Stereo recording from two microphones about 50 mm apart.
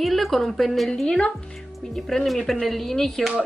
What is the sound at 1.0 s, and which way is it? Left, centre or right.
Speech, centre.